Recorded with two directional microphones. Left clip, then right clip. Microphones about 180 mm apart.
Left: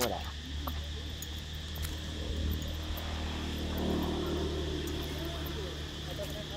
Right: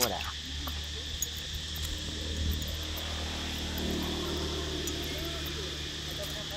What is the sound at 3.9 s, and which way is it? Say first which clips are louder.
Vehicle: left 1 dB; 25° right (ahead or behind).